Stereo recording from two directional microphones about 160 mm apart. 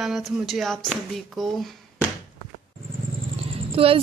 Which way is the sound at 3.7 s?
35° right (ahead or behind).